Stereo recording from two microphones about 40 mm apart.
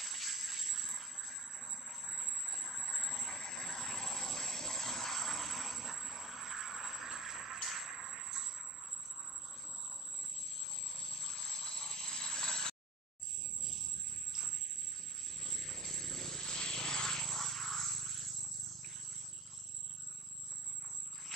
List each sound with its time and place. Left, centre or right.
0.0 s a sound: centre
10.6 s vehicle: centre
15.2 s vehicle: centre